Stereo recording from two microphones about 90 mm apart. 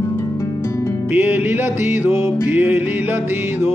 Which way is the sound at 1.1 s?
20° right (ahead or behind).